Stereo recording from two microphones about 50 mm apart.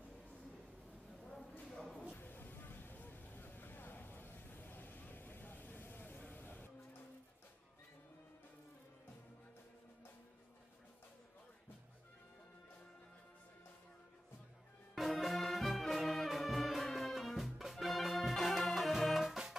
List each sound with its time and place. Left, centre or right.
2.1 s vehicle: left
6.3 s a sound: left
15.0 s music: centre